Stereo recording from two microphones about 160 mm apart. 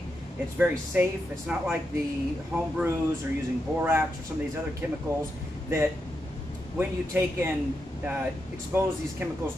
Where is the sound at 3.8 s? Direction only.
15° right (ahead or behind).